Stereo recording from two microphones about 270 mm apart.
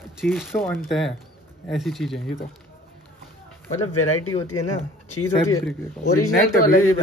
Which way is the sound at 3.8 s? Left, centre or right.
Left.